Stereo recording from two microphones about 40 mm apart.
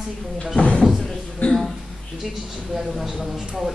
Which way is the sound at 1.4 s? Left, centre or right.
Left.